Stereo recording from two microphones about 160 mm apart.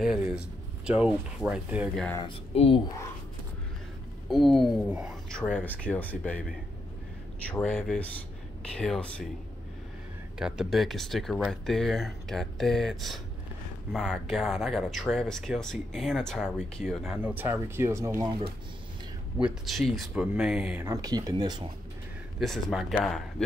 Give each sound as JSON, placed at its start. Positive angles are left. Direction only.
{"t": 0.0, "sound": "speech", "side_deg": -5}
{"t": 2.5, "sound": "speech", "side_deg": 40}
{"t": 4.3, "sound": "speech", "side_deg": 0}
{"t": 5.3, "sound": "speech", "side_deg": 5}
{"t": 7.5, "sound": "speech", "side_deg": 5}
{"t": 10.4, "sound": "speech", "side_deg": -5}
{"t": 19.3, "sound": "speech", "side_deg": 0}
{"t": 20.9, "sound": "speech", "side_deg": -20}
{"t": 22.4, "sound": "speech", "side_deg": 0}